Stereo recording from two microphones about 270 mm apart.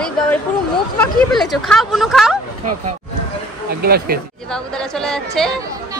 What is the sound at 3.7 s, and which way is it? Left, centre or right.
Speech, right.